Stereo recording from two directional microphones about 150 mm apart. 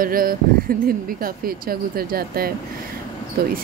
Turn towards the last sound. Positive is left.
turn(degrees=-90)